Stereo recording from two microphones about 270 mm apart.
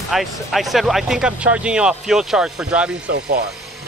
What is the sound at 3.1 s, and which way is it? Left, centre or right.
Speech, right.